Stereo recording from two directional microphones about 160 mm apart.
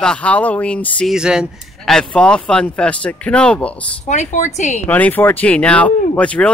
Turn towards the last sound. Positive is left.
turn(degrees=5)  # may be behind; listen again after turning